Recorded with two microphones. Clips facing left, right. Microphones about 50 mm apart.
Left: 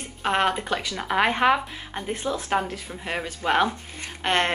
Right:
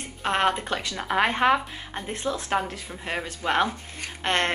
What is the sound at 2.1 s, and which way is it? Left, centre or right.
Speech, centre.